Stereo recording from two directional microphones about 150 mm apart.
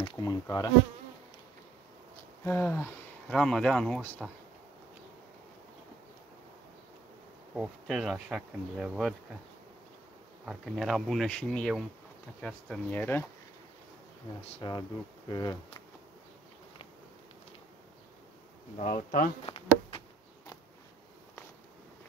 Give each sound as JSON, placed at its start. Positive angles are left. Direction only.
{"t": 0.2, "sound": "speech", "side_deg": 25}
{"t": 2.4, "sound": "speech", "side_deg": 15}
{"t": 3.3, "sound": "bee", "side_deg": 5}
{"t": 7.5, "sound": "bee", "side_deg": 0}
{"t": 10.4, "sound": "bee", "side_deg": 0}
{"t": 13.0, "sound": "speech", "side_deg": 15}
{"t": 14.6, "sound": "speech", "side_deg": 30}
{"t": 18.8, "sound": "bee", "side_deg": 55}
{"t": 19.4, "sound": "bee", "side_deg": 40}